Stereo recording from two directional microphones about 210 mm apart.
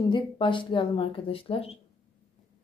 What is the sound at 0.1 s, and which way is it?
Speech, 25° left (ahead or behind).